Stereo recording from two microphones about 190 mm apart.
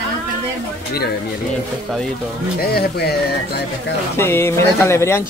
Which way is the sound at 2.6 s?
55° left (ahead or behind).